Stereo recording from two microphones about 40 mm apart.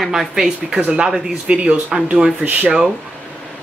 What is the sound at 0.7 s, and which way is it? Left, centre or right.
Speech, right.